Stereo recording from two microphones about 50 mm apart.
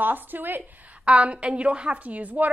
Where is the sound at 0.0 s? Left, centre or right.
Right.